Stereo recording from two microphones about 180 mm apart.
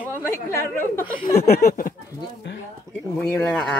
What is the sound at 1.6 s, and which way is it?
Speech, 50° left (ahead or behind).